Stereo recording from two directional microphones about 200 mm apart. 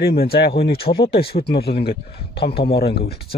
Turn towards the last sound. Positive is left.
turn(degrees=50)  # may be behind; listen again after turning